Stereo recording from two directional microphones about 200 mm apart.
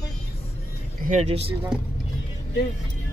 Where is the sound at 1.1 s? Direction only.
35° right (ahead or behind).